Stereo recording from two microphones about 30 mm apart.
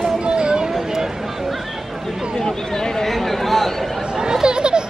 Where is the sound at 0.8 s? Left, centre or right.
Centre.